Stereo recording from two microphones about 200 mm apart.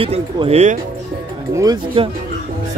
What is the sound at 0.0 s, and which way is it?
Speech, 30° right (ahead or behind).